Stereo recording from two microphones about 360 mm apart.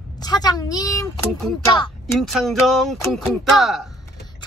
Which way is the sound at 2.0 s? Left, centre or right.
Centre.